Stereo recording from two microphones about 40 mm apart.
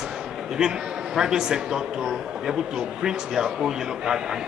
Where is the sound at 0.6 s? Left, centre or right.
Centre.